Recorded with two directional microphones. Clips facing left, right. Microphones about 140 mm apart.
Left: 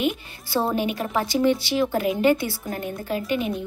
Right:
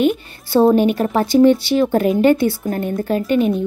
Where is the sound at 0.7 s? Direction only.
50° right (ahead or behind).